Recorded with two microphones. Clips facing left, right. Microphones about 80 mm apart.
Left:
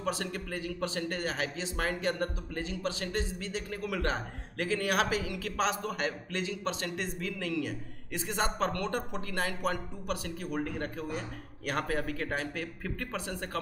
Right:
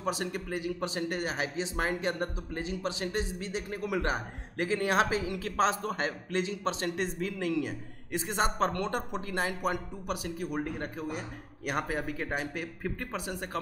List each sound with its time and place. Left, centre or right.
0.0 s a man's voice: centre